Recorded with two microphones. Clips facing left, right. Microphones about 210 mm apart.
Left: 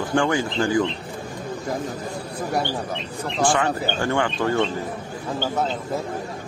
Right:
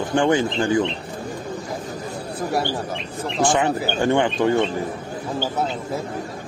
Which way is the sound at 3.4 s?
20° right (ahead or behind).